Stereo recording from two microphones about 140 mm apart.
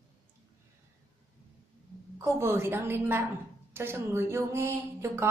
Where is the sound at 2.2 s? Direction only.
20° right (ahead or behind).